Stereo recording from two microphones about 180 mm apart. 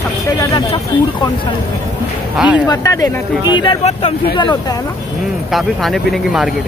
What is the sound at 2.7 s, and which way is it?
Speech, 20° left (ahead or behind).